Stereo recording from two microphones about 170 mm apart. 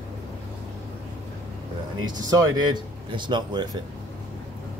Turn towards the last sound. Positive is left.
turn(degrees=-25)  # may be behind; listen again after turning